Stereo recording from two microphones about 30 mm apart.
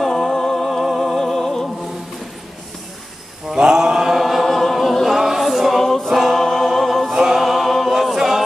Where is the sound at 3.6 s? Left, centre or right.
Right.